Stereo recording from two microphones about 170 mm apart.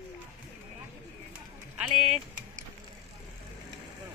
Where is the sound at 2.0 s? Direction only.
45° right (ahead or behind).